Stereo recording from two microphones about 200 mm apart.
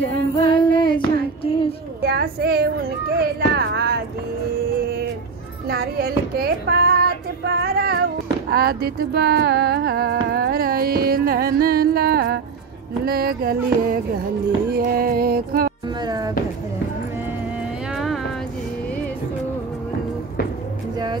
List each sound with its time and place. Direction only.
0.5 s female singing: 25° left (ahead or behind)
2.0 s music: 50° right (ahead or behind)
5.7 s child singing: 50° right (ahead or behind)
8.5 s music: 50° right (ahead or behind)
16.0 s speech: 20° right (ahead or behind)
17.9 s a sound: centre (ahead or behind)